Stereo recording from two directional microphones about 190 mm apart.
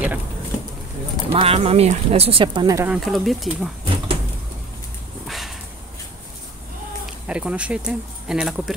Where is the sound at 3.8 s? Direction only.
30° right (ahead or behind).